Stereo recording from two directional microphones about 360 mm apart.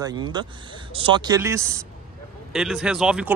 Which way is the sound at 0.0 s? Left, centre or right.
Centre.